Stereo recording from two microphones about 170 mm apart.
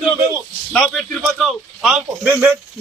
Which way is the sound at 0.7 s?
Centre (ahead or behind).